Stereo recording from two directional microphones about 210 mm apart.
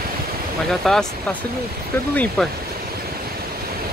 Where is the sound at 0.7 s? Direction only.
Centre (ahead or behind).